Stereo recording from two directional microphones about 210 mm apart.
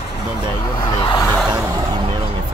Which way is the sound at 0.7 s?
20° left (ahead or behind).